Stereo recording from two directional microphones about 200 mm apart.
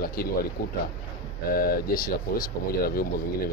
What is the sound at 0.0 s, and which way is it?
Speech, 45° left (ahead or behind).